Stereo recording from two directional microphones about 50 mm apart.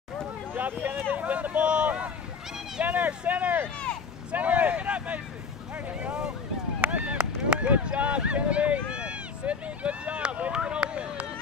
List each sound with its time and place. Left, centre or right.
0.6 s a sound: right
1.1 s vehicle: right
4.3 s speech: right
6.9 s speech: right